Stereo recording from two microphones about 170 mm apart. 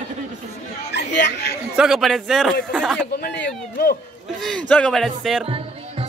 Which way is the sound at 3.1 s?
65° left (ahead or behind).